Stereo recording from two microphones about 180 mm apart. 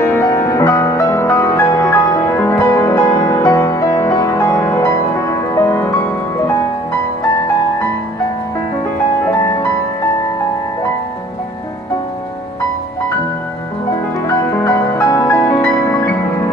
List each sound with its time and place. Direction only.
0.0 s music: 15° left (ahead or behind)
14.2 s music: 15° left (ahead or behind)